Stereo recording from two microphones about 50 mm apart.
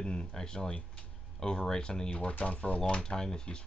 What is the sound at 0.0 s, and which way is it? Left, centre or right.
Speech, centre.